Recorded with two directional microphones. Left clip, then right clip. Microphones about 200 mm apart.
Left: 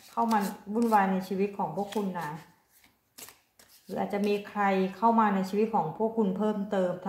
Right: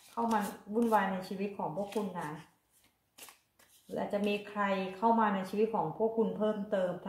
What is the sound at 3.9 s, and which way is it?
Speech, 30° left (ahead or behind).